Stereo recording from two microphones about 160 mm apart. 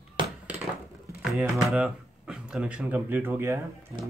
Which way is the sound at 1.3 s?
Centre (ahead or behind).